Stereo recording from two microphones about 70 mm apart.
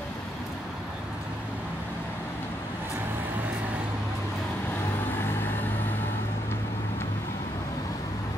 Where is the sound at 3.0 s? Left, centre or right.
Right.